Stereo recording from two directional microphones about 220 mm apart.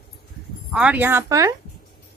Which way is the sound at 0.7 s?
5° right (ahead or behind).